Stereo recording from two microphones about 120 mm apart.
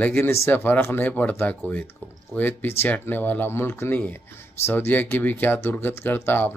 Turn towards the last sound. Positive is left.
turn(degrees=20)  # may be behind; listen again after turning